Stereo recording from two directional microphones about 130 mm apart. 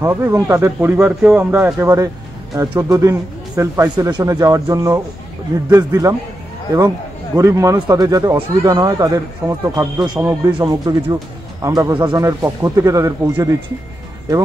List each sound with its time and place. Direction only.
0.0 s speech: 20° right (ahead or behind)
7.3 s speech: 25° right (ahead or behind)
12.3 s speech: 25° right (ahead or behind)